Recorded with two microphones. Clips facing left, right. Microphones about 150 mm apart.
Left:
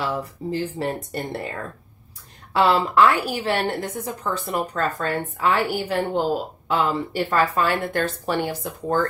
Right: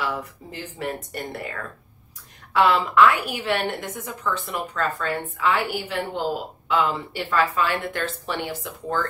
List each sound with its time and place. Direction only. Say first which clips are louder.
0.0 s a woman's voice: left 3 dB; 35° left (ahead or behind)